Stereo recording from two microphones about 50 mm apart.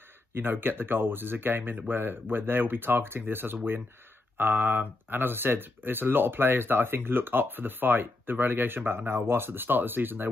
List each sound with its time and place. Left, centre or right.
0.3 s speech: right